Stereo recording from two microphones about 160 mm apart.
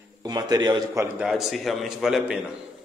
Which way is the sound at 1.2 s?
Centre (ahead or behind).